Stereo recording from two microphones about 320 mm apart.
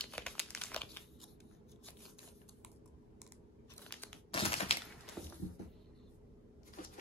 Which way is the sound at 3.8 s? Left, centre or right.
Centre.